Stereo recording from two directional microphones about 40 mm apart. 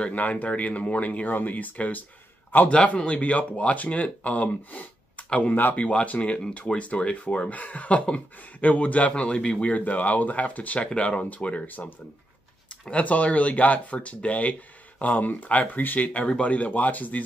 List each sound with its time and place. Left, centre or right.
0.0 s speech: left
2.7 s speech: left
5.5 s speech: left
5.8 s speech: left
9.7 s speech: left
11.6 s speech: left
13.0 s speech: left